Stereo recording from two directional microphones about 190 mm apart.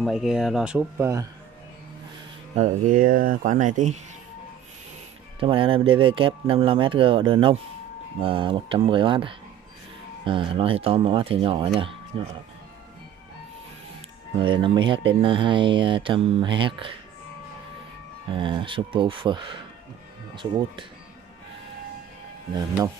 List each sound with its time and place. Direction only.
0.0 s speech: centre (ahead or behind)
2.5 s speech: 40° right (ahead or behind)
5.4 s speech: 30° right (ahead or behind)
14.3 s speech: 25° right (ahead or behind)
18.3 s speech: 25° right (ahead or behind)